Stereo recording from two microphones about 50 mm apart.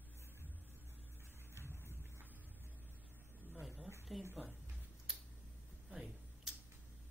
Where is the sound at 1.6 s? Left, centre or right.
Right.